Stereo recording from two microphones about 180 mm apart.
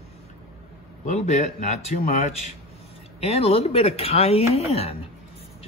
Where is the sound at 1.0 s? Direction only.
40° left (ahead or behind).